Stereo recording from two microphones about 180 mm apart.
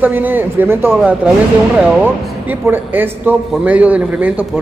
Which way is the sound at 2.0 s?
10° right (ahead or behind).